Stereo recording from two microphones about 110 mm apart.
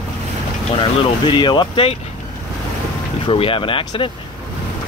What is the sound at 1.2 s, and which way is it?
Speech, 45° left (ahead or behind).